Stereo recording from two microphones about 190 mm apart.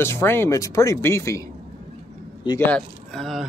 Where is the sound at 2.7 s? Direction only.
5° left (ahead or behind).